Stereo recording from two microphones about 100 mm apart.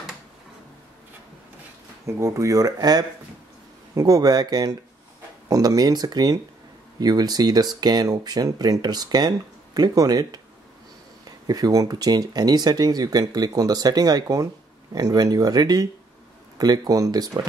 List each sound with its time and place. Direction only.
2.0 s speech: 30° right (ahead or behind)